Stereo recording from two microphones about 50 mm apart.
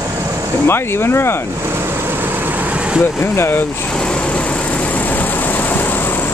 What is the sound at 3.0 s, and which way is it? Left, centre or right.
Speech, left.